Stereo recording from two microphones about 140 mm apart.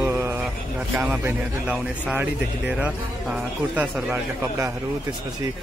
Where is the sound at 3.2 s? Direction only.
5° right (ahead or behind).